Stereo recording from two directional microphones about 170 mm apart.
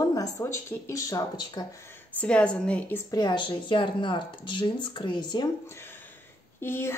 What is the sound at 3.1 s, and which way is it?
Speech, 25° left (ahead or behind).